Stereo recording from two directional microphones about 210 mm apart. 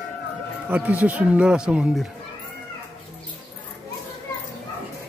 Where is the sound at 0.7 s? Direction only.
5° right (ahead or behind).